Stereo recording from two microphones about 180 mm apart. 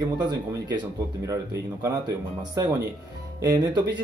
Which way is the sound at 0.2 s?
25° right (ahead or behind).